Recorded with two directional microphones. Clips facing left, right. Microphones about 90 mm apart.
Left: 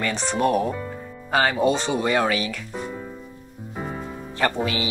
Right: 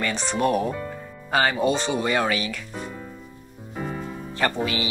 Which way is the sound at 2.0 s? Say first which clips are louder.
Left 4 dB; 70° left (ahead or behind).